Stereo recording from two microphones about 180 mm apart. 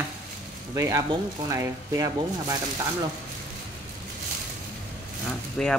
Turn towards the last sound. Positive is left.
turn(degrees=5)  # may be behind; listen again after turning